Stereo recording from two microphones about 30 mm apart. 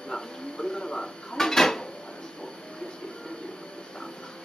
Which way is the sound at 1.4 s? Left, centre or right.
Centre.